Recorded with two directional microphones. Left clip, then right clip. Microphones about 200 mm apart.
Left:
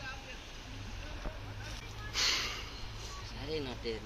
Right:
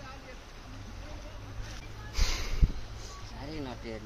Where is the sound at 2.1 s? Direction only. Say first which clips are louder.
Left 5 dB; 15° right (ahead or behind).